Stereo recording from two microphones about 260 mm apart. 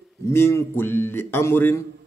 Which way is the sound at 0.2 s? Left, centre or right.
Centre.